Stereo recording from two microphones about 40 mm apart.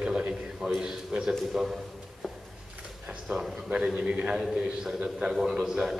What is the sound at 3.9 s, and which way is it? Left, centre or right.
A man's voice, right.